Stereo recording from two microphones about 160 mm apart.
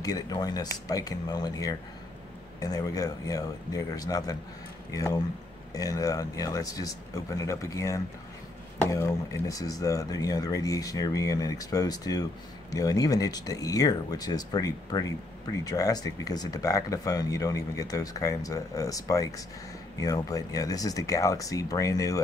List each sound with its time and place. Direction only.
0.0 s speech: 25° left (ahead or behind)